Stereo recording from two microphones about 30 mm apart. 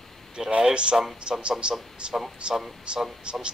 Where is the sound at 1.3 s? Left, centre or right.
Right.